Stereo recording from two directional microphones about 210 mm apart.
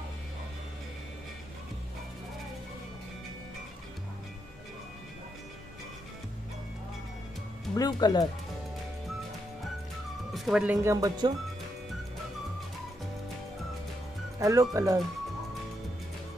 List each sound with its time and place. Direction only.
7.7 s speech: 20° left (ahead or behind)
10.3 s speech: centre (ahead or behind); by 11.3 s 20° right (ahead or behind)
14.4 s speech: 15° right (ahead or behind)